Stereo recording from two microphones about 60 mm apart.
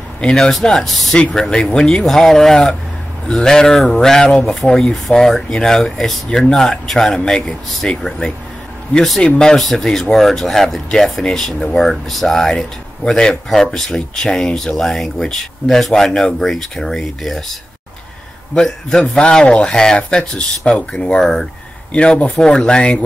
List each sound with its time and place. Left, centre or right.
0.2 s speech: centre
9.6 s speech: centre
18.5 s speech: centre